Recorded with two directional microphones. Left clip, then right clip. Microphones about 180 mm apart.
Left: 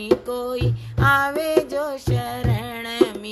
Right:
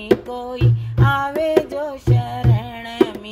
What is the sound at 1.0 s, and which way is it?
Music, 30° left (ahead or behind).